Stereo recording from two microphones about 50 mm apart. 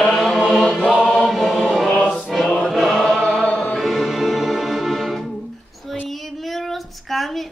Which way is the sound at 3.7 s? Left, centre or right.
Centre.